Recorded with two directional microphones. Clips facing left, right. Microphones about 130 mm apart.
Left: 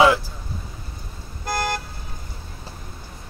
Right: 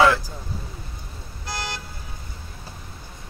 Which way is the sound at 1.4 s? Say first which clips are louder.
Left 7 dB; 50° left (ahead or behind).